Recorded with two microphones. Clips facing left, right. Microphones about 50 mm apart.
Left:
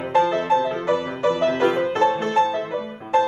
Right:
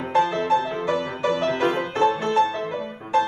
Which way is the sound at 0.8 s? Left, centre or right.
Left.